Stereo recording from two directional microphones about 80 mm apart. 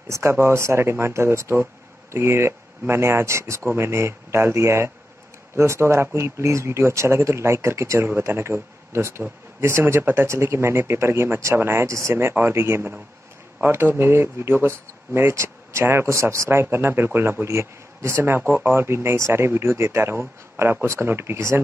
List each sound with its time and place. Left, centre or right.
0.1 s speech: right